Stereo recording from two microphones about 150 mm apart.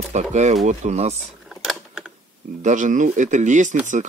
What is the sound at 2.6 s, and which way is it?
Speech, 55° right (ahead or behind).